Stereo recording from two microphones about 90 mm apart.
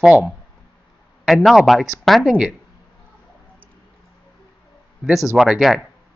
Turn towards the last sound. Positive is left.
turn(degrees=0)  # may be behind; listen again after turning